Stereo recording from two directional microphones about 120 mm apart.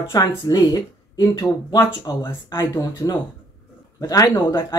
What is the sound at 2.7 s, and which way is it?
Speech, 35° left (ahead or behind).